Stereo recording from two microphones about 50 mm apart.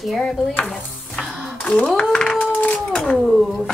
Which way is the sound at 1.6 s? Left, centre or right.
Centre.